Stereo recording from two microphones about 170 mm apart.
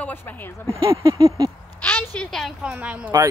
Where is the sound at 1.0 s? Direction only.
20° right (ahead or behind).